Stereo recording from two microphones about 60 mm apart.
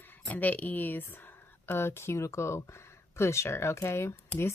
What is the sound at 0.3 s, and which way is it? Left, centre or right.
A woman's voice, left.